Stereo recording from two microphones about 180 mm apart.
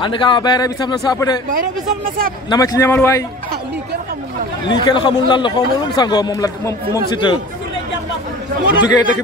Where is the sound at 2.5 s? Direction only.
20° left (ahead or behind).